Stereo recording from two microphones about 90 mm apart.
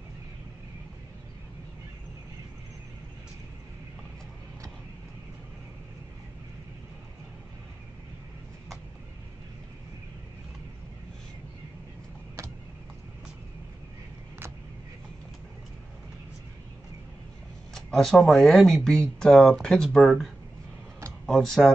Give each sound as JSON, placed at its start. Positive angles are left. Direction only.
{"t": 17.7, "sound": "speech", "side_deg": 0}
{"t": 21.3, "sound": "speech", "side_deg": 5}